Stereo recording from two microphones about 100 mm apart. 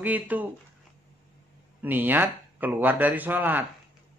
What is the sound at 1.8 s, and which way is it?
Speech, 20° right (ahead or behind).